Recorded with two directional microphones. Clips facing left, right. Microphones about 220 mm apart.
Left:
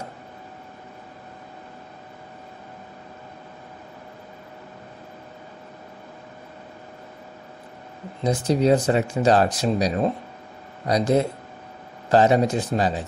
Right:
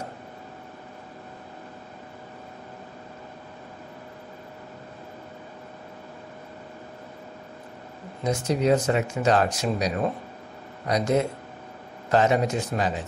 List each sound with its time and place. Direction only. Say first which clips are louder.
8.2 s speech: left 4 dB; 35° left (ahead or behind)